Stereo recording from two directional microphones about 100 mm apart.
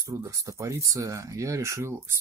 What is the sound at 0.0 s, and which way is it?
Speech, 35° right (ahead or behind).